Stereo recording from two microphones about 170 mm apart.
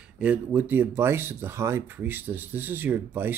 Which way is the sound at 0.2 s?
10° right (ahead or behind).